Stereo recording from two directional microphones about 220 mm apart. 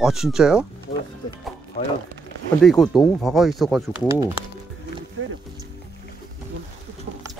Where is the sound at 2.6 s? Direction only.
Centre (ahead or behind).